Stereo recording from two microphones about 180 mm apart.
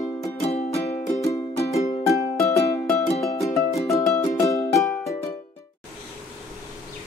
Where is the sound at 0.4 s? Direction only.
35° left (ahead or behind).